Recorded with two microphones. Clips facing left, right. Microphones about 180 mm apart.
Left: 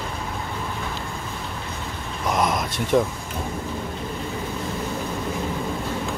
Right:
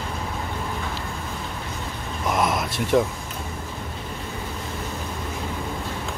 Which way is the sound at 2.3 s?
Centre (ahead or behind).